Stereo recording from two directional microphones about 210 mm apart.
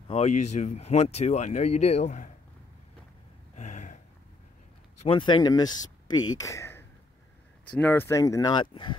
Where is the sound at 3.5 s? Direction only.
35° left (ahead or behind).